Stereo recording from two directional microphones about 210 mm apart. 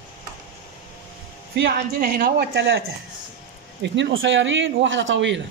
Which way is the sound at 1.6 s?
45° right (ahead or behind).